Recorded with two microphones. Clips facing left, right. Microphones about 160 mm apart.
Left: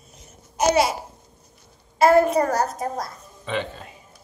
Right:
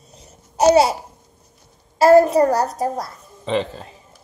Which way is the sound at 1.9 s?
35° right (ahead or behind).